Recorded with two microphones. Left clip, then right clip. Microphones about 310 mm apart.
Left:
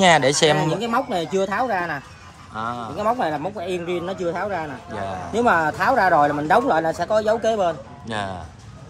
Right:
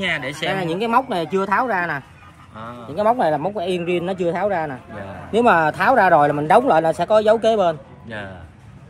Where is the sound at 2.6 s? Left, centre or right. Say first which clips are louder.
Left 7 dB; centre.